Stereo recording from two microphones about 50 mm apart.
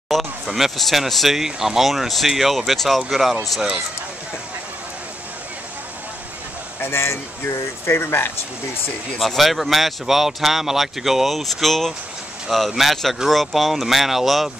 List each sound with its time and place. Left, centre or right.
0.5 s speech: centre
6.8 s speech: left
9.2 s speech: centre